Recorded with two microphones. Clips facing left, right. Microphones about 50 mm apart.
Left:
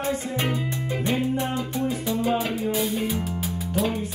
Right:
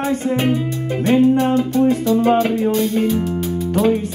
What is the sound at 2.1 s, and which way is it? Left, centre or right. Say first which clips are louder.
Music: right 10 dB; centre.